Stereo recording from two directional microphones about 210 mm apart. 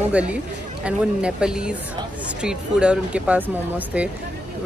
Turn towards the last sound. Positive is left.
turn(degrees=-5)  # may be behind; listen again after turning